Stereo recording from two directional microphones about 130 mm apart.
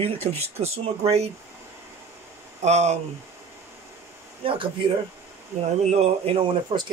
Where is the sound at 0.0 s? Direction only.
50° right (ahead or behind).